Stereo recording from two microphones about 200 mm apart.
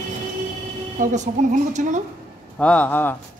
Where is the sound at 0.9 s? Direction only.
40° right (ahead or behind).